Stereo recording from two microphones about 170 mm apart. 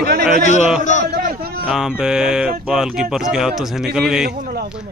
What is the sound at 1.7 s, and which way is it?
Speech, 5° right (ahead or behind).